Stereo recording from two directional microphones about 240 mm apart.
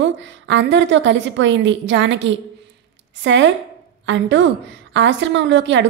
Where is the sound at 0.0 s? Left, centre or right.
Right.